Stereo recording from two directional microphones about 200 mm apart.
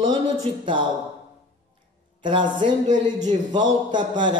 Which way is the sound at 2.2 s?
25° right (ahead or behind).